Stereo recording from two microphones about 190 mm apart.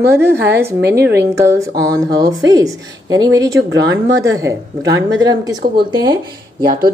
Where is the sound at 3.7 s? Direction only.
70° right (ahead or behind).